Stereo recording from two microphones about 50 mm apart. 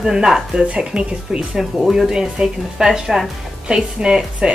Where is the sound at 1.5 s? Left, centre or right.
Centre.